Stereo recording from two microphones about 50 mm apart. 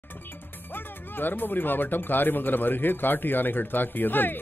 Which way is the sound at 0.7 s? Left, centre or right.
Left.